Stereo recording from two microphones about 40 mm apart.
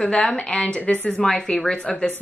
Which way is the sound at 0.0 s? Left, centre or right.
Centre.